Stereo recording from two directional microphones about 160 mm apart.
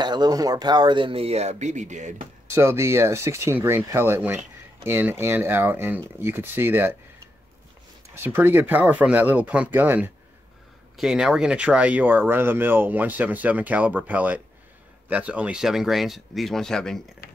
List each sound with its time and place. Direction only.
0.0 s speech: 25° right (ahead or behind); by 2.2 s 50° right (ahead or behind)
2.4 s speech: 15° right (ahead or behind)
8.1 s speech: 15° right (ahead or behind); by 17.0 s 5° left (ahead or behind)